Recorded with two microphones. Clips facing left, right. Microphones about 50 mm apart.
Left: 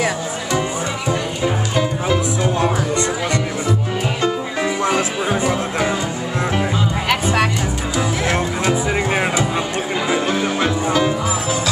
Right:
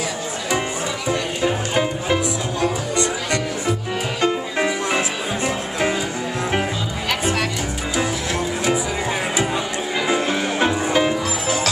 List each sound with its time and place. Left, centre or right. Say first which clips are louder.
4.2 s music: right 2 dB; right
5.4 s music: left 3 dB; centre
10.6 s music: right 1 dB; right